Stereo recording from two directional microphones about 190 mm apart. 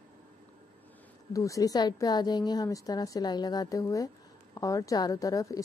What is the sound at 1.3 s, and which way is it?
A woman's voice, 15° left (ahead or behind).